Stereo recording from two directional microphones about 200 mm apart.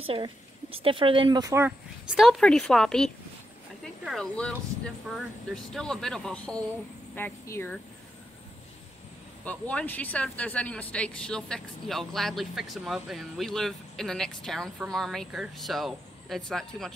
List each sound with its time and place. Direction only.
0.0 s a woman's voice: 25° right (ahead or behind)
2.1 s speech: centre (ahead or behind)
9.4 s speech: 5° left (ahead or behind)